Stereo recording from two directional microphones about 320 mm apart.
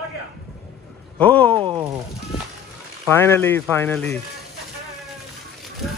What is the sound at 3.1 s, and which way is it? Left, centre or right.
Speech, centre.